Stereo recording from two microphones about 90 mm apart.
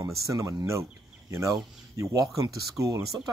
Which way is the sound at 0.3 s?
40° right (ahead or behind).